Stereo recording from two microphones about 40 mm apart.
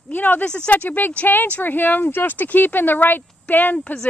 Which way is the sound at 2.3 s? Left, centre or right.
Left.